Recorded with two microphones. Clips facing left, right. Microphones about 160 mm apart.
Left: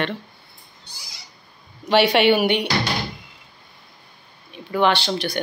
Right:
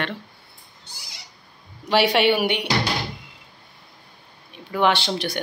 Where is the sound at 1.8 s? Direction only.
5° right (ahead or behind).